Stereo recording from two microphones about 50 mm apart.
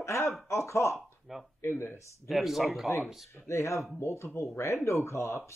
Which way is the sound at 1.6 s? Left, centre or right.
Left.